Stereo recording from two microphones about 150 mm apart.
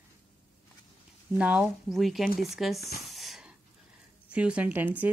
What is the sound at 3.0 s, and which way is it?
Wheeze, centre (ahead or behind).